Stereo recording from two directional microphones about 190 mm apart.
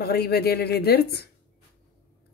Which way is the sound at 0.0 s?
55° left (ahead or behind).